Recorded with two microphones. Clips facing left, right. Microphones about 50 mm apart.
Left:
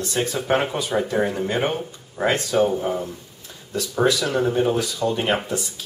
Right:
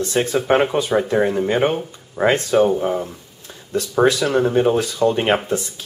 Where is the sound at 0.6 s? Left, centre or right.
Centre.